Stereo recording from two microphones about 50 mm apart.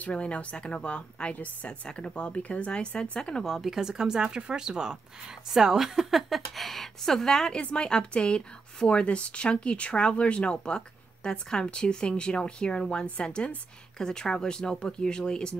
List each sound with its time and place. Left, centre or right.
0.0 s speech: left
1.7 s speech: centre
3.5 s a woman's voice: centre